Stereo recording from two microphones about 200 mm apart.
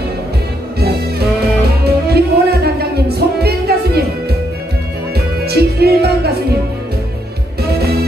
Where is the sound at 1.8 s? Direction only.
55° right (ahead or behind).